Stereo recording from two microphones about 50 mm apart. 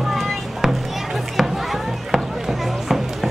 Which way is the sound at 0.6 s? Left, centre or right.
Centre.